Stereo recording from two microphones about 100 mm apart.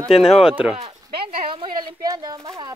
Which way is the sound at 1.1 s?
60° right (ahead or behind).